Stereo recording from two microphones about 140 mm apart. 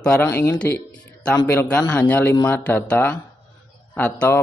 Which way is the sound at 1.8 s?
25° left (ahead or behind).